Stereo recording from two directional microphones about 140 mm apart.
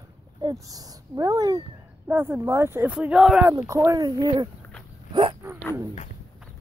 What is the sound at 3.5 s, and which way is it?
Speech, 20° right (ahead or behind).